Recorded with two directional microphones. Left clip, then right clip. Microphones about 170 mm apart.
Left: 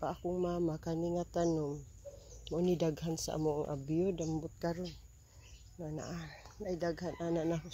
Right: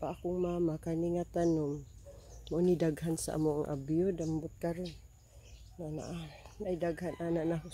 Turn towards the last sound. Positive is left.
turn(degrees=-15)  # may be behind; listen again after turning